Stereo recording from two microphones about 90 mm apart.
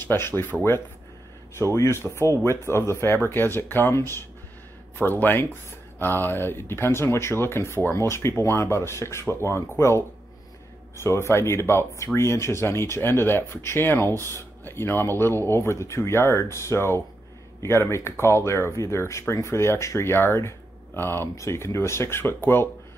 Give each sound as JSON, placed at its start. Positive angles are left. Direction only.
{"t": 0.0, "sound": "speech", "side_deg": 25}